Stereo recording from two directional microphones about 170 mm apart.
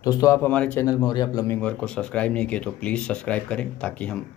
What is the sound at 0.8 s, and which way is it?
Speech, 25° left (ahead or behind).